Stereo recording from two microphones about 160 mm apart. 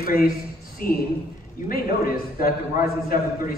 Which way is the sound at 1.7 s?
65° left (ahead or behind).